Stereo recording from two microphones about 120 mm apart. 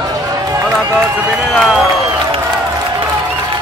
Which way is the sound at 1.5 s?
Centre (ahead or behind).